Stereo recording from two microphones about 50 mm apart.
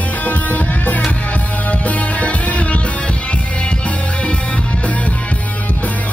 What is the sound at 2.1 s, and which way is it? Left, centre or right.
Music, left.